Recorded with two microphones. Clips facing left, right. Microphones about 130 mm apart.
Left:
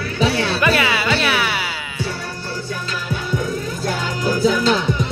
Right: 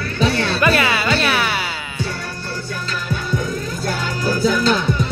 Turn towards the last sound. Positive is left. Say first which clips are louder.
# even
turn(degrees=15)  # may be behind; listen again after turning